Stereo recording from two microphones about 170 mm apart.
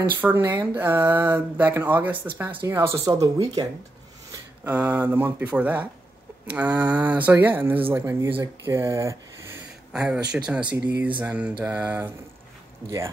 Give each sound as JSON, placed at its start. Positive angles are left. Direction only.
{"t": 0.2, "sound": "speech", "side_deg": -10}
{"t": 4.6, "sound": "speech", "side_deg": -10}
{"t": 9.9, "sound": "speech", "side_deg": -5}